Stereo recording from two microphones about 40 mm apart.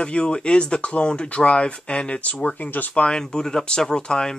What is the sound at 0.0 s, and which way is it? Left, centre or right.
Speech, left.